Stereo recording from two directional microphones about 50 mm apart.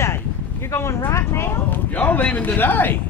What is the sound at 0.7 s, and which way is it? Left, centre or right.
Speech, left.